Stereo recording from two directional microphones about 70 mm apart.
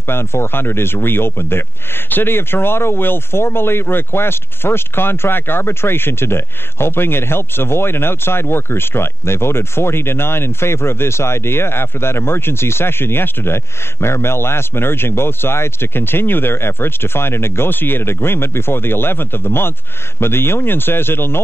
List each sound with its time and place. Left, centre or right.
0.1 s speech: left